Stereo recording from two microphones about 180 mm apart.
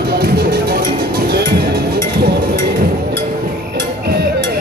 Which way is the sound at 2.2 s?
60° right (ahead or behind).